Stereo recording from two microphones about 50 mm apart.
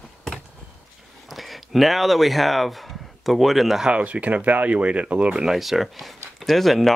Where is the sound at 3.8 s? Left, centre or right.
Right.